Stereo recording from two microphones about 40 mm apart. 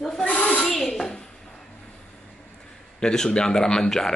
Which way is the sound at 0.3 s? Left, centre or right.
Left.